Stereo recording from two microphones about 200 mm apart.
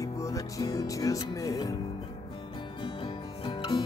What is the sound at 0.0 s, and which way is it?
Speech, 15° left (ahead or behind).